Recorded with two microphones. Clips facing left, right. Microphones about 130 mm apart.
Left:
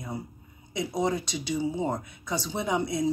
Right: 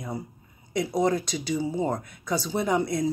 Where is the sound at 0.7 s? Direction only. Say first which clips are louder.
Right 4 dB; 5° left (ahead or behind).